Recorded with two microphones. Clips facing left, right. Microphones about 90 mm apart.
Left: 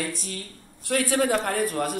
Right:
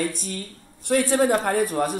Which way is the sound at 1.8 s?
30° right (ahead or behind).